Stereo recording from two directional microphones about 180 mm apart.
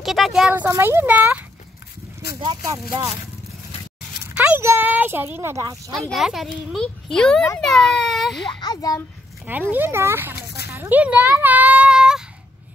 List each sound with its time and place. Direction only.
0.0 s speech: centre (ahead or behind)
2.6 s speech: 20° right (ahead or behind)
4.3 s speech: 10° right (ahead or behind)
5.9 s speech: centre (ahead or behind)
8.5 s a child's voice: 20° left (ahead or behind)
9.5 s speech: 10° right (ahead or behind)
10.3 s a sound: 65° left (ahead or behind)
10.7 s a sound: 10° right (ahead or behind)